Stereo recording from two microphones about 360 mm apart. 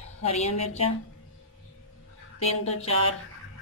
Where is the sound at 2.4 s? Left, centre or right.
Centre.